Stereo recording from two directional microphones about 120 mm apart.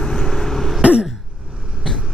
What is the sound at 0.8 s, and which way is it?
Throat clearing, 10° right (ahead or behind).